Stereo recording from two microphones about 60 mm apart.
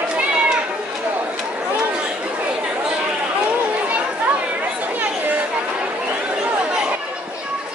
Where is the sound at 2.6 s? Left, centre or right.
Centre.